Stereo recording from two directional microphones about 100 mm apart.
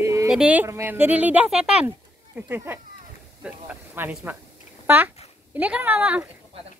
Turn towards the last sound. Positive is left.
turn(degrees=-15)  # may be behind; listen again after turning